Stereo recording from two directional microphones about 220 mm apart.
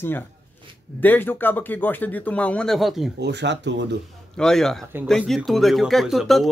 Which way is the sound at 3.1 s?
50° right (ahead or behind).